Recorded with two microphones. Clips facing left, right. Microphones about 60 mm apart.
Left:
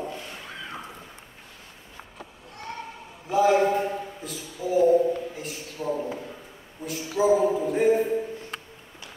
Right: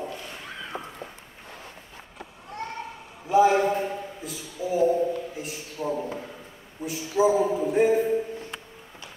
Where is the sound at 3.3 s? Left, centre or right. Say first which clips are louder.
Right 1 dB; centre.